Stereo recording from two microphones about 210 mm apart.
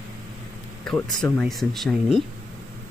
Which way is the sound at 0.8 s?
5° left (ahead or behind).